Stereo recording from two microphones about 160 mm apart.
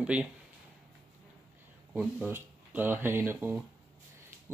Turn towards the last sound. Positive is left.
turn(degrees=-15)  # may be behind; listen again after turning